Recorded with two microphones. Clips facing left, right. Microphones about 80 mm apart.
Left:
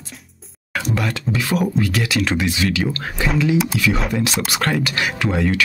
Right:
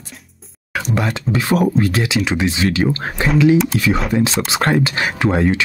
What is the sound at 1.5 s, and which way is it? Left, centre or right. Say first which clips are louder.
Speech: right 4 dB; right.